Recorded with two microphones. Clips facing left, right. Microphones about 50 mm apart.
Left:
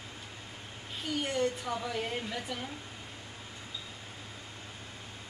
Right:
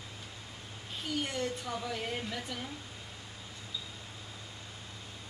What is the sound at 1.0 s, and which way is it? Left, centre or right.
A woman's voice, centre.